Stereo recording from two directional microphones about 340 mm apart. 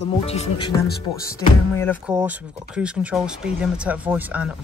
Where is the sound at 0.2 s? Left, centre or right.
Centre.